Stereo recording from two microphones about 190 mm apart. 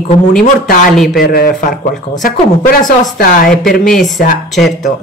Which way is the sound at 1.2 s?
50° left (ahead or behind).